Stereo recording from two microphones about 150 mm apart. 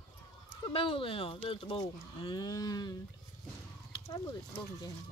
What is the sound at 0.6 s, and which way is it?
Speech, 35° left (ahead or behind).